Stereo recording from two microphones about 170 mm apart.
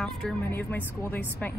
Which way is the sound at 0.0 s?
5° left (ahead or behind).